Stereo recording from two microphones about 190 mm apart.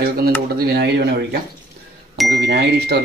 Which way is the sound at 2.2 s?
65° right (ahead or behind).